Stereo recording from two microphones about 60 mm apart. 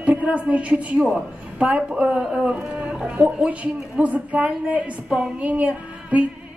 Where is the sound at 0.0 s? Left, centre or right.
Right.